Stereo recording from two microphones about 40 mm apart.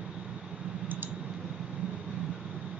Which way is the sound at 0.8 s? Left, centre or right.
Right.